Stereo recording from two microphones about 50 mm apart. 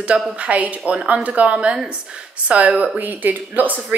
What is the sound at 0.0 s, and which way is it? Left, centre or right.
Speech, right.